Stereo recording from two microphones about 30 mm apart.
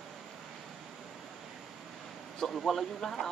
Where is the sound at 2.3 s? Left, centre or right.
Centre.